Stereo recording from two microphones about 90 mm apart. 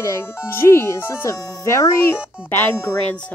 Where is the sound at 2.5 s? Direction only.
25° left (ahead or behind).